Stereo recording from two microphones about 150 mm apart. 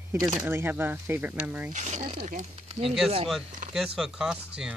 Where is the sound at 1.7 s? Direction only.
50° right (ahead or behind).